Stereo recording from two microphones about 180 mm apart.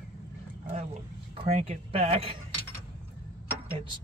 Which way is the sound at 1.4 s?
35° right (ahead or behind).